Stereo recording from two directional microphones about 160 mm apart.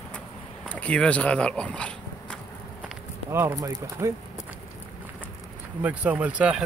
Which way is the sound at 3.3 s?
20° right (ahead or behind).